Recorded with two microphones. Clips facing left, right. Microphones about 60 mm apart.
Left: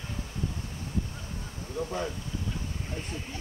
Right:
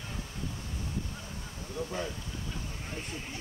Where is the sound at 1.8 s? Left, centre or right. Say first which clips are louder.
Left 3 dB; left.